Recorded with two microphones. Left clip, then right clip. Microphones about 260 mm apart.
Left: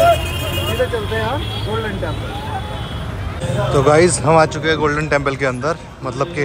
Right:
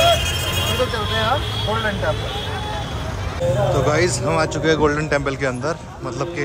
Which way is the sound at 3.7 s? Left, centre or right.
Centre.